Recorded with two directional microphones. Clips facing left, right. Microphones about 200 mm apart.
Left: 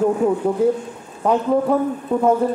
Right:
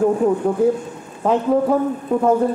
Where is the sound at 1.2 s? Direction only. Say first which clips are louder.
Right 1 dB; centre (ahead or behind).